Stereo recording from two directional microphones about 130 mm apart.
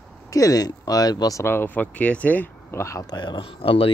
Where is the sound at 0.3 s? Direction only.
25° left (ahead or behind).